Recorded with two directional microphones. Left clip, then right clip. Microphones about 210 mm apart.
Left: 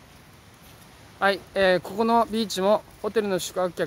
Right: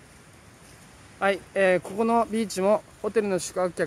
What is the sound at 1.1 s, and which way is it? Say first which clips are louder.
Speech: left 1 dB; centre (ahead or behind).